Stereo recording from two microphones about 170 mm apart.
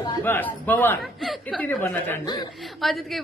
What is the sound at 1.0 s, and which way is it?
Speech, centre (ahead or behind).